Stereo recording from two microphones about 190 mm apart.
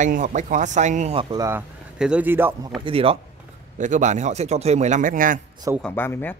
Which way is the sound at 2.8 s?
30° right (ahead or behind).